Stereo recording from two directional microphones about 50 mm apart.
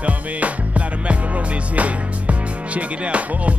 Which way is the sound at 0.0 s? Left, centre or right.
Right.